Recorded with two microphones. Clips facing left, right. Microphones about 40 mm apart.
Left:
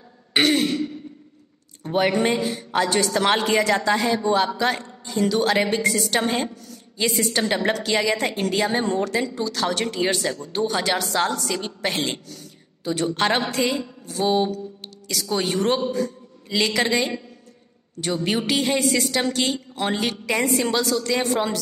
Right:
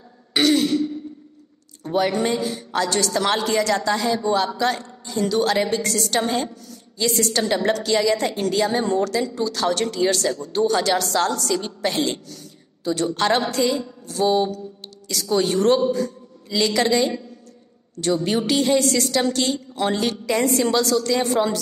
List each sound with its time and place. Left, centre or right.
0.3 s throat clearing: left
1.8 s a woman's voice: left
9.4 s speech: centre
9.8 s a woman's voice: centre
15.0 s a man's voice: centre